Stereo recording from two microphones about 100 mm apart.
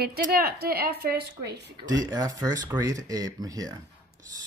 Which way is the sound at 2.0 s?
40° right (ahead or behind).